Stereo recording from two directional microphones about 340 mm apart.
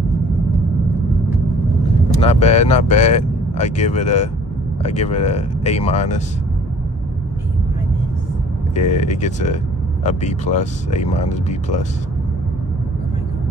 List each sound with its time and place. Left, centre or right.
2.2 s speech: centre
8.7 s speech: left